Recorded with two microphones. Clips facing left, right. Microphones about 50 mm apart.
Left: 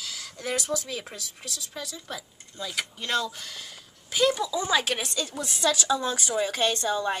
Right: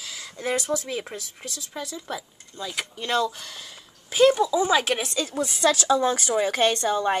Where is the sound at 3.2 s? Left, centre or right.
Right.